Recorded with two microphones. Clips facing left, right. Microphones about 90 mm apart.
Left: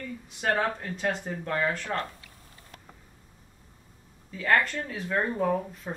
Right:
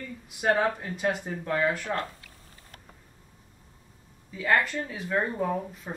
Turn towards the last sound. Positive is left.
turn(degrees=0)  # may be behind; listen again after turning